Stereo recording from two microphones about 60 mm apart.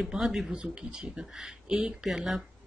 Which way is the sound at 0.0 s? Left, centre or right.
Centre.